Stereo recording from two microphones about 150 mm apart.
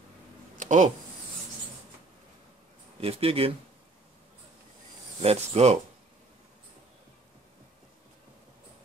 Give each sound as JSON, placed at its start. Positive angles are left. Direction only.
{"t": 0.6, "sound": "a sound", "side_deg": -55}
{"t": 3.0, "sound": "speech", "side_deg": -40}
{"t": 5.2, "sound": "speech", "side_deg": -45}